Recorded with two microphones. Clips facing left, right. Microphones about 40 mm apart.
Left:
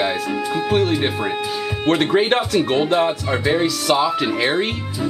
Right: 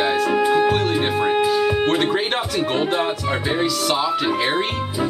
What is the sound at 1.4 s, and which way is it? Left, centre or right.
Speech, centre.